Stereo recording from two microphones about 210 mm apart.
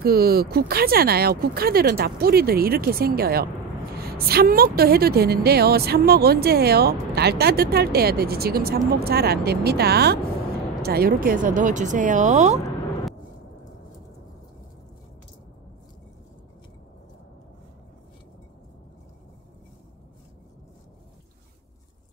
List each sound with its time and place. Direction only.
0.0 s a woman's voice: 45° right (ahead or behind)